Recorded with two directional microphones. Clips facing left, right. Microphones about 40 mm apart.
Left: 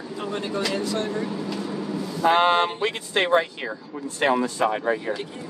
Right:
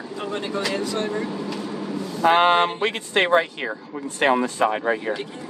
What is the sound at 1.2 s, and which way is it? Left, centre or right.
Vehicle, centre.